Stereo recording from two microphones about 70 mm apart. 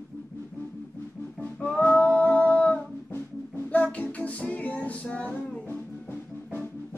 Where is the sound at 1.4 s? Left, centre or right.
Centre.